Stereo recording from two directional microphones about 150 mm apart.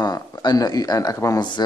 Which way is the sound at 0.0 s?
25° left (ahead or behind).